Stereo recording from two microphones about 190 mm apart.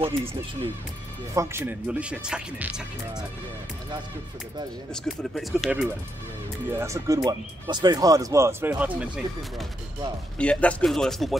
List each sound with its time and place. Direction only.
0.0 s speech: 30° right (ahead or behind)
1.3 s speech: 15° right (ahead or behind)
5.0 s speech: centre (ahead or behind)
6.7 s speech: 15° right (ahead or behind)
10.3 s speech: 5° left (ahead or behind)